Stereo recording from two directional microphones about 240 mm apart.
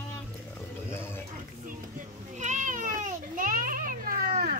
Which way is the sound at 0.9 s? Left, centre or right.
Centre.